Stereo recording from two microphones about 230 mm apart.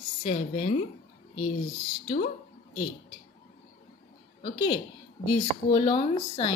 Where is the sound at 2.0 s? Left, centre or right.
Left.